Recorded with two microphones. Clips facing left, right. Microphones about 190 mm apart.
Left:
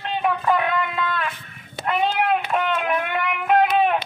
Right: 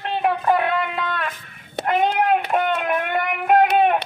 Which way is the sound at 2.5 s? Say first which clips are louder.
Right 2 dB; 40° right (ahead or behind).